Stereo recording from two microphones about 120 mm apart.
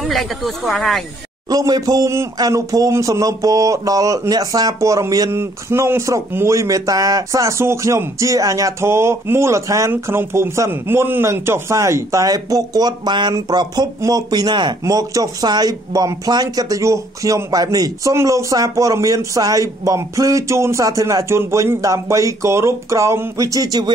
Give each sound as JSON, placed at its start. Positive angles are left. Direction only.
{"t": 0.0, "sound": "speech", "side_deg": 0}
{"t": 1.5, "sound": "a man's voice", "side_deg": -30}